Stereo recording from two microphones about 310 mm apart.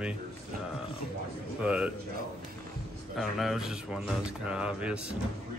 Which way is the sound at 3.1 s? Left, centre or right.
Centre.